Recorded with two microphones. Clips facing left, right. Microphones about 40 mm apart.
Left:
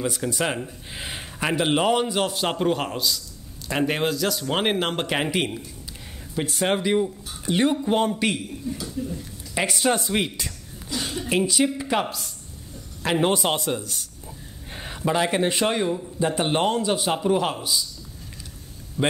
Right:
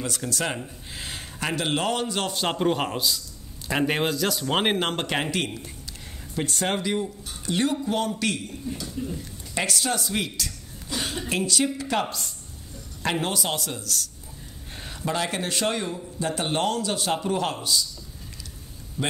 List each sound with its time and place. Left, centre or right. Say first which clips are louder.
0.0 s a man's voice: left 3 dB; centre
2.2 s a man's voice: left 1 dB; centre; by 8.4 s left
8.7 s speech: left 2 dB; centre
9.7 s speech: left 6 dB; left
10.9 s a sound: left 1 dB; right
11.2 s a man's voice: left 4 dB; centre
13.2 s a man's voice: left 6 dB; left; by 17.8 s centre
19.0 s speech: left 5 dB; centre